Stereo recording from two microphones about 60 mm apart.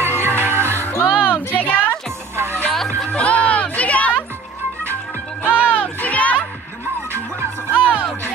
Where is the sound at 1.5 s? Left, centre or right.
Left.